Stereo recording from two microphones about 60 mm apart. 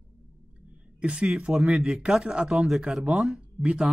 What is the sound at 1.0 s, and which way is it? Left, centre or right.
Speech, centre.